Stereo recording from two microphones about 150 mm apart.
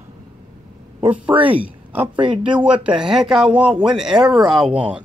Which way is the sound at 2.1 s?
35° right (ahead or behind).